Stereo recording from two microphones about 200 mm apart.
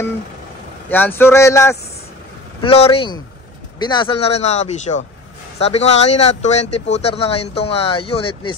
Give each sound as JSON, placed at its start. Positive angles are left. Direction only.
{"t": 0.8, "sound": "speech", "side_deg": 10}
{"t": 2.6, "sound": "speech", "side_deg": 30}